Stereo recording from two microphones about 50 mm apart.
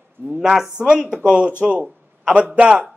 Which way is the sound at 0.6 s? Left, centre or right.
Right.